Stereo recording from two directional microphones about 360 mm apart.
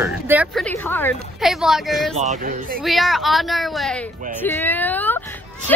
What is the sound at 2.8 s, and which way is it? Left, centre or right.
Speech, centre.